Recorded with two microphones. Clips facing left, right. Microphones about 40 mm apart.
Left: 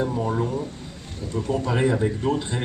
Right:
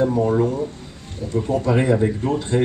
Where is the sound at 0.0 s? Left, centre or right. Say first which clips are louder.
Right 7 dB; centre.